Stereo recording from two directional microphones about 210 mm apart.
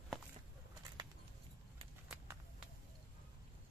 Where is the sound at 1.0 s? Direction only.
20° right (ahead or behind).